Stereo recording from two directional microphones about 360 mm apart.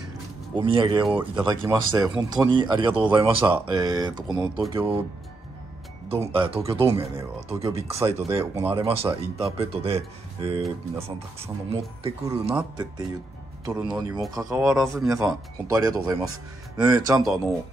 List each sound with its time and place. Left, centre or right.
0.6 s speech: centre
6.0 s speech: centre